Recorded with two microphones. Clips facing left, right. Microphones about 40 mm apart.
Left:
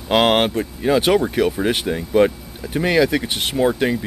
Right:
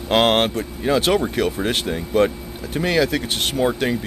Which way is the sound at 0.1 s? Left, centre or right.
Centre.